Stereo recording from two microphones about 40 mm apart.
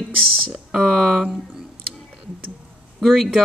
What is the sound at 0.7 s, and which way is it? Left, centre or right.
Speech, centre.